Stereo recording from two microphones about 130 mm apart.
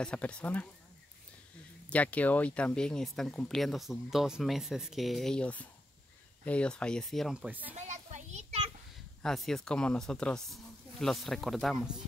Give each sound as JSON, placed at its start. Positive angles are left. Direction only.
{"t": 0.0, "sound": "speech", "side_deg": 10}
{"t": 1.9, "sound": "speech", "side_deg": 10}
{"t": 7.7, "sound": "a sound", "side_deg": -65}
{"t": 9.2, "sound": "speech", "side_deg": 5}